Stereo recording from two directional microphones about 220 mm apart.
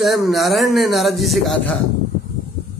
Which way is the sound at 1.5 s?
60° left (ahead or behind).